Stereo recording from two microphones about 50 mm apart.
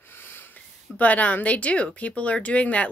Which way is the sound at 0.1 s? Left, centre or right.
Left.